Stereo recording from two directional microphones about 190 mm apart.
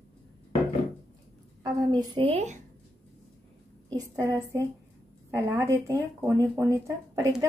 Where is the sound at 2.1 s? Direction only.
30° right (ahead or behind).